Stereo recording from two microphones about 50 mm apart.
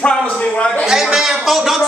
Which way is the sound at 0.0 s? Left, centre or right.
Centre.